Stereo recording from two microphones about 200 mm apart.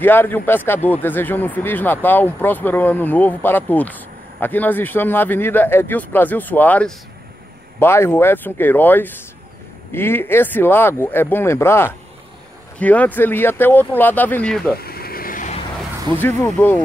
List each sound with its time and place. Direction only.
0.0 s speech: 10° left (ahead or behind)
14.8 s vehicle: 50° left (ahead or behind)
16.1 s speech: 10° left (ahead or behind)